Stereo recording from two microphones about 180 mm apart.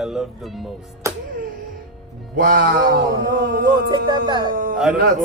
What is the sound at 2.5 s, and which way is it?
Speech, 60° right (ahead or behind).